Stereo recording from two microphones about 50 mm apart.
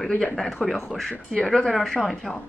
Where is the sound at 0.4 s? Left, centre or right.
Centre.